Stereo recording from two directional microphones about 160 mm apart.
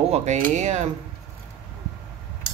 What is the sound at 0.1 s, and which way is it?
Speech, 45° right (ahead or behind).